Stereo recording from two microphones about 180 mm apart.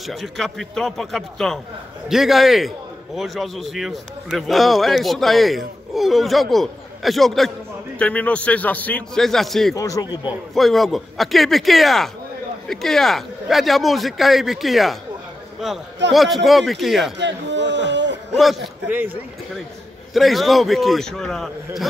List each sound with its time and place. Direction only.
0.0 s a man's voice: centre (ahead or behind)
9.8 s a man's voice: 20° left (ahead or behind)
10.2 s a man's voice: centre (ahead or behind)
17.2 s a sound: 80° right
18.4 s a man's voice: centre (ahead or behind)
20.2 s a man's voice: centre (ahead or behind)